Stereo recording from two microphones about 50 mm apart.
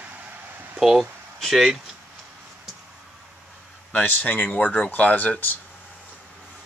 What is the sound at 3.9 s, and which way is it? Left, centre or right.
Speech, left.